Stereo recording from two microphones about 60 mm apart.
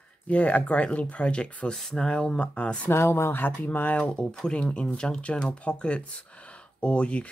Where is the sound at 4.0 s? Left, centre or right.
Centre.